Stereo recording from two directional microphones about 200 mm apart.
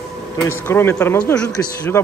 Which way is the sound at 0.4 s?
10° left (ahead or behind).